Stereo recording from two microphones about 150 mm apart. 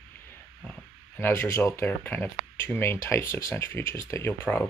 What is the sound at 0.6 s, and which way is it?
Speech, 10° left (ahead or behind).